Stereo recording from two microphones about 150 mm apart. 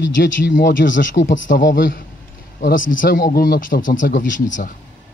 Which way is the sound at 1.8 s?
70° left (ahead or behind).